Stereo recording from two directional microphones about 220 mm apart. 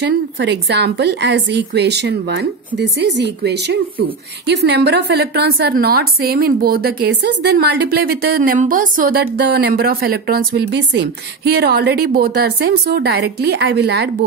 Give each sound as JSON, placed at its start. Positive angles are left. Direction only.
{"t": 0.0, "sound": "a woman's voice", "side_deg": -50}